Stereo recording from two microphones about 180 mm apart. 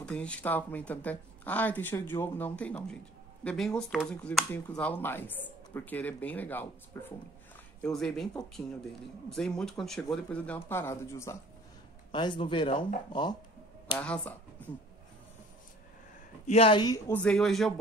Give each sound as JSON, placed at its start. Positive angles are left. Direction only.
{"t": 0.0, "sound": "speech", "side_deg": 5}
{"t": 12.1, "sound": "speech", "side_deg": 25}
{"t": 13.9, "sound": "speech", "side_deg": 5}
{"t": 14.6, "sound": "a sound", "side_deg": 10}
{"t": 16.4, "sound": "speech", "side_deg": 30}
{"t": 17.1, "sound": "speech", "side_deg": 5}